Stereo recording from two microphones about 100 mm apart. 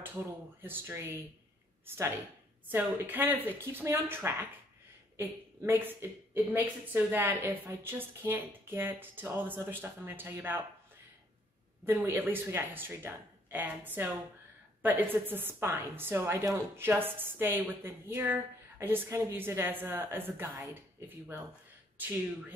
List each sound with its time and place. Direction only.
0.0 s a woman's voice: 20° right (ahead or behind)
12.1 s a woman's voice: 20° right (ahead or behind)